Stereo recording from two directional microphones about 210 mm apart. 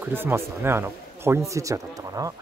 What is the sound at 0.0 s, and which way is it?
Speech, 10° right (ahead or behind).